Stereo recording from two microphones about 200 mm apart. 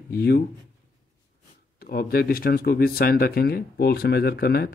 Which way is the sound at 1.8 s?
50° left (ahead or behind).